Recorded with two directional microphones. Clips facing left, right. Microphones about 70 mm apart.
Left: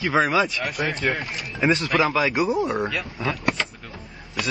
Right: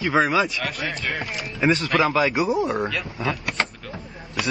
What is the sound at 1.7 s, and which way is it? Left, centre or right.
Speech, centre.